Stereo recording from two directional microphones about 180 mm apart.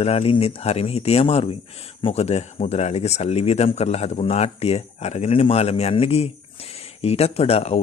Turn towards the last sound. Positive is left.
turn(degrees=35)  # may be behind; listen again after turning